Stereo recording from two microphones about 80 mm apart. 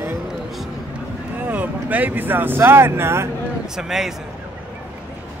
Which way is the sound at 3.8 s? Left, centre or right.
Centre.